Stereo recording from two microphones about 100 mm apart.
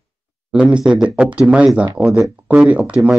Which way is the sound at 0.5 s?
10° right (ahead or behind).